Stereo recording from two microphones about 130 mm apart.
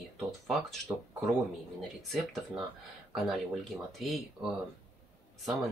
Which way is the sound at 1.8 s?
Centre (ahead or behind).